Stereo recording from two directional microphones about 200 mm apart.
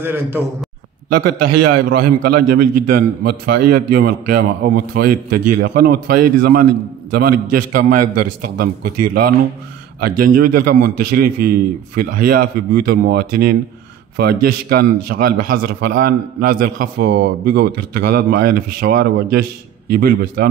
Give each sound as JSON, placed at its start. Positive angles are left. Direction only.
{"t": 0.0, "sound": "a man's voice", "side_deg": -10}
{"t": 1.9, "sound": "a man's voice", "side_deg": -50}